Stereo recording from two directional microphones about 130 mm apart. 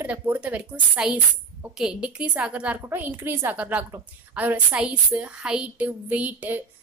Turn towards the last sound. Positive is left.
turn(degrees=-10)  # may be behind; listen again after turning